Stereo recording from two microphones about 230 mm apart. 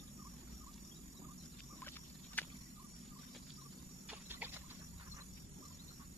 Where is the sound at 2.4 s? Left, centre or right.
Centre.